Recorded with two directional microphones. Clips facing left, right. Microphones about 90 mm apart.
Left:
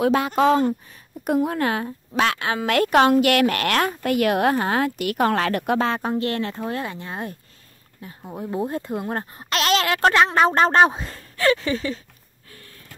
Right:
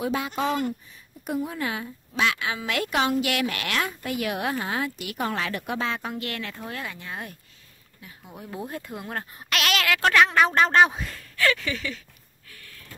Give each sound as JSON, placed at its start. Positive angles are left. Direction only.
{"t": 0.0, "sound": "a woman's voice", "side_deg": 65}
{"t": 0.3, "sound": "speech", "side_deg": 50}
{"t": 0.8, "sound": "a woman's voice", "side_deg": 65}
{"t": 12.4, "sound": "a sound", "side_deg": 30}